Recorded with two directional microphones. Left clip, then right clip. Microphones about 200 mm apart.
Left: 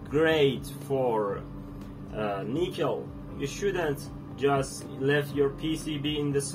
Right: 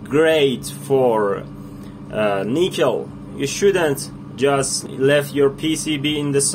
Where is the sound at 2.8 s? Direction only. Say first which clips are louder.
Right 11 dB; 30° right (ahead or behind).